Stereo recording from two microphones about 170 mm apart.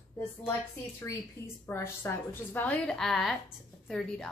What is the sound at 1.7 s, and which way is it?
A woman's voice, 15° left (ahead or behind).